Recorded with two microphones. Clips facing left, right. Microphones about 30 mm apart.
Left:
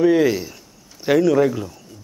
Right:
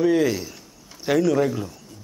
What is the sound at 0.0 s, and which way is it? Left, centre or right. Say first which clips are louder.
A man's voice: left 4 dB; centre.